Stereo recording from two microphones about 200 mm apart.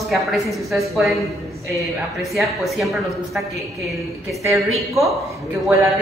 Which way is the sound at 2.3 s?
Centre (ahead or behind).